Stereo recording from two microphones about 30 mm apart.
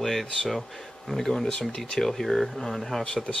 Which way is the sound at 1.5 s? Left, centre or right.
Left.